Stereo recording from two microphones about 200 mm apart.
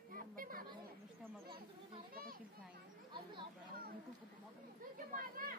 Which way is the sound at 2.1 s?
45° right (ahead or behind).